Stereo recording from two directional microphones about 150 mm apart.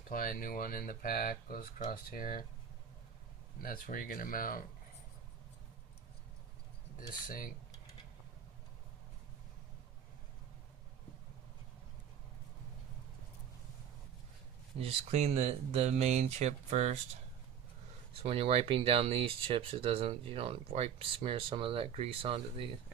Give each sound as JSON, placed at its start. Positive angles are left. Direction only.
{"t": 0.1, "sound": "speech", "side_deg": 70}
{"t": 3.6, "sound": "speech", "side_deg": 70}
{"t": 7.2, "sound": "speech", "side_deg": 65}
{"t": 14.8, "sound": "speech", "side_deg": -45}
{"t": 18.2, "sound": "speech", "side_deg": -40}